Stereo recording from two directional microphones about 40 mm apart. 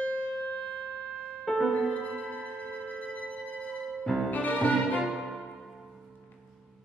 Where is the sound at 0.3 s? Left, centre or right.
Left.